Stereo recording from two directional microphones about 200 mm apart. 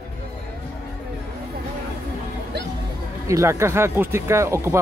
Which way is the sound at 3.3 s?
15° right (ahead or behind).